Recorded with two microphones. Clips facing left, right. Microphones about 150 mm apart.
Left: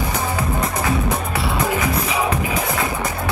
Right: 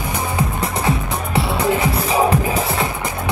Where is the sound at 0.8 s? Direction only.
25° right (ahead or behind).